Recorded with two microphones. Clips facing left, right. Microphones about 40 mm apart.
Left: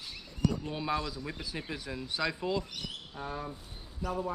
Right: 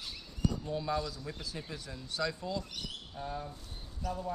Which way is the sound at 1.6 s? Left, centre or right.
Left.